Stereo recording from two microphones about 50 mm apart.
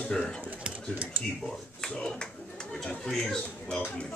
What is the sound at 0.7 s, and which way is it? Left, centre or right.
Speech, right.